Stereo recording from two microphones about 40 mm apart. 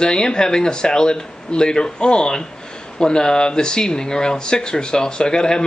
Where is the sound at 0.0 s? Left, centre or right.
Left.